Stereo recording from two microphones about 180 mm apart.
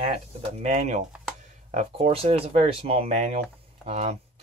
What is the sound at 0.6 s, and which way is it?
Speech, 40° right (ahead or behind).